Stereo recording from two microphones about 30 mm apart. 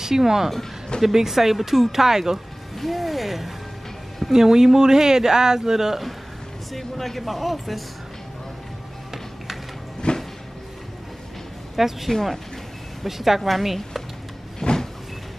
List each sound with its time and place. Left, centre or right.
0.0 s speech: centre
2.8 s speech: centre
4.3 s speech: centre
6.8 s speech: centre
10.0 s a sound: left
11.7 s speech: centre
14.6 s vehicle: left